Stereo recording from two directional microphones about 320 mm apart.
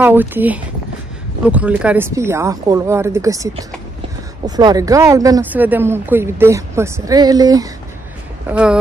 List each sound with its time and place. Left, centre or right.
0.0 s speech: centre
4.5 s speech: centre